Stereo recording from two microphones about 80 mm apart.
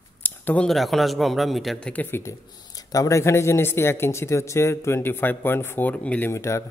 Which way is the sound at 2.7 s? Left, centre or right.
Left.